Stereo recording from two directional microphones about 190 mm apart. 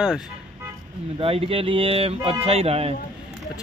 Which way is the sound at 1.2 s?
30° right (ahead or behind).